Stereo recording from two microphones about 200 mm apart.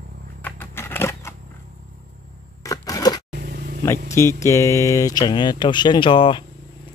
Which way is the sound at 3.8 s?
15° left (ahead or behind).